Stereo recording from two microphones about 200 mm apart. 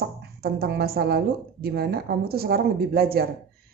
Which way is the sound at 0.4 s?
50° right (ahead or behind).